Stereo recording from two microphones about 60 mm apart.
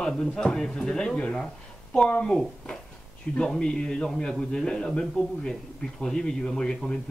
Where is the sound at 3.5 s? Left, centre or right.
Centre.